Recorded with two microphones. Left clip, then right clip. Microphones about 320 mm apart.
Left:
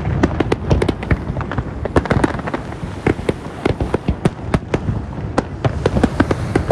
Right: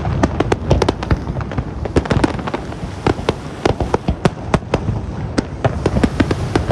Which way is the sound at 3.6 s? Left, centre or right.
Right.